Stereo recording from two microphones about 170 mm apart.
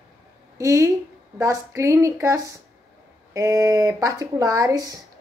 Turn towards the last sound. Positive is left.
turn(degrees=-20)  # may be behind; listen again after turning